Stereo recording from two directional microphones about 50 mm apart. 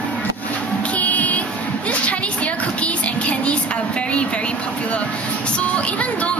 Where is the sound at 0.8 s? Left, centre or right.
Left.